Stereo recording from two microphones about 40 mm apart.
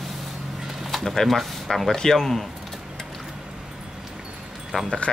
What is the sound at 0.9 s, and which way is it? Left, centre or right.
Speech, centre.